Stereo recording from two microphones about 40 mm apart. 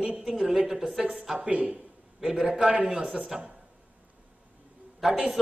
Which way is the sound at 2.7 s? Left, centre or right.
Right.